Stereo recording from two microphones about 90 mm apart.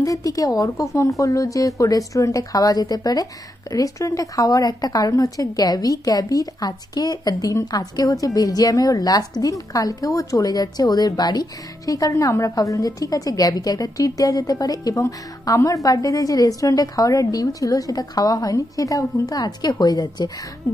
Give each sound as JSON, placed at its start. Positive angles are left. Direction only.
{"t": 0.0, "sound": "a woman's voice", "side_deg": 40}